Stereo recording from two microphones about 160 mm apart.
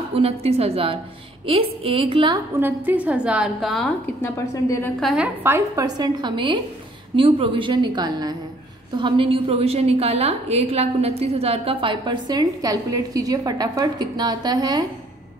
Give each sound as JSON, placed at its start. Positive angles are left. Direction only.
{"t": 0.1, "sound": "a woman's voice", "side_deg": -35}
{"t": 2.6, "sound": "a woman's voice", "side_deg": -10}
{"t": 4.2, "sound": "a woman's voice", "side_deg": 15}
{"t": 5.0, "sound": "a woman's voice", "side_deg": -5}